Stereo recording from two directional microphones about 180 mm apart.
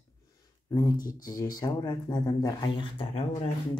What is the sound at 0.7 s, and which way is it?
Speech, 20° left (ahead or behind).